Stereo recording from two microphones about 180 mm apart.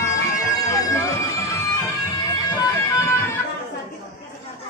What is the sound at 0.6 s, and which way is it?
Music, 20° left (ahead or behind).